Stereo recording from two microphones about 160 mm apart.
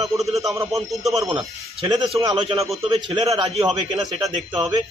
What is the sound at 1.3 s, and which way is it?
Speech, 30° right (ahead or behind).